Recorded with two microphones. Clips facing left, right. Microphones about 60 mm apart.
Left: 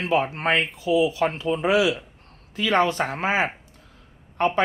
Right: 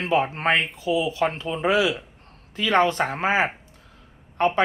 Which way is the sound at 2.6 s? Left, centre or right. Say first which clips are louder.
Right 1 dB; right.